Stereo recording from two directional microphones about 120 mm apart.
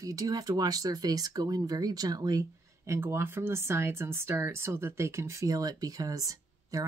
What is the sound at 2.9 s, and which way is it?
Speech, 20° right (ahead or behind).